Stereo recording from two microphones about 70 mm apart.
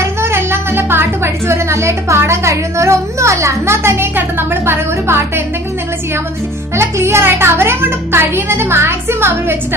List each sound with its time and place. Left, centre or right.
0.0 s speech: right
6.8 s a child's voice: right